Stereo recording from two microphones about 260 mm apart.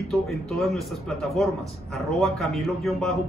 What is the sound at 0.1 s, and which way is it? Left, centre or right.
A man's voice, centre.